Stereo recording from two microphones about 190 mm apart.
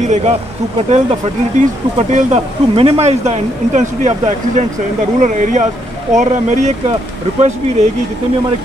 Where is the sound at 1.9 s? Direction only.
35° right (ahead or behind).